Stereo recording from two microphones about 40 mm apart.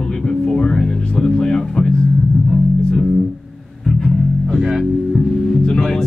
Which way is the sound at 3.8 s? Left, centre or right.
Centre.